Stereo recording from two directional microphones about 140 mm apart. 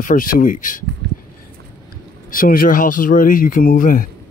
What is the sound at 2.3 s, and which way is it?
Speech, 90° left.